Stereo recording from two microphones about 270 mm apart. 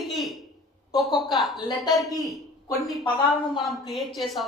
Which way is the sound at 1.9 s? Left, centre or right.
Centre.